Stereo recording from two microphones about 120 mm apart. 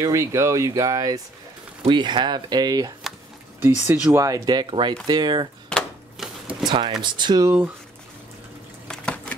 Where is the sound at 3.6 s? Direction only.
15° right (ahead or behind); by 5.4 s 35° right (ahead or behind).